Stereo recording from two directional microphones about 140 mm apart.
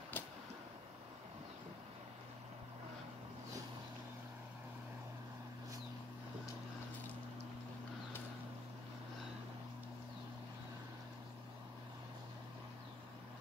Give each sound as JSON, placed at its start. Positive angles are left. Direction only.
{"t": 0.2, "sound": "vehicle", "side_deg": 15}